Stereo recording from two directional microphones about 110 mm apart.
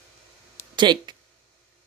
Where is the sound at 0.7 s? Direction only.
45° right (ahead or behind).